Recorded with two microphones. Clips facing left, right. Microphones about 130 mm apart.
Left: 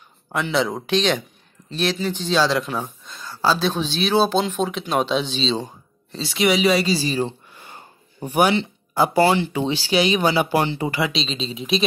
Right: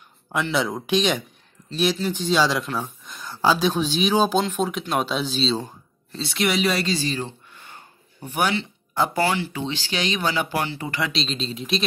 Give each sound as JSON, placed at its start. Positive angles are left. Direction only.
{"t": 0.3, "sound": "speech", "side_deg": -5}
{"t": 2.6, "sound": "speech", "side_deg": 10}
{"t": 3.1, "sound": "speech", "side_deg": -15}
{"t": 9.2, "sound": "speech", "side_deg": 30}
{"t": 9.5, "sound": "speech", "side_deg": 15}
{"t": 11.1, "sound": "speech", "side_deg": 0}